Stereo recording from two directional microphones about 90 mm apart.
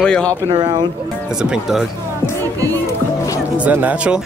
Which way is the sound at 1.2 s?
10° right (ahead or behind).